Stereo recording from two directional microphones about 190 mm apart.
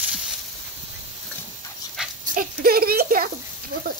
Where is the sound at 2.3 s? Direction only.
50° right (ahead or behind).